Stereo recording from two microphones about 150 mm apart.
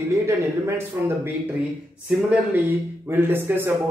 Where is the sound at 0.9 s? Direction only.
15° right (ahead or behind).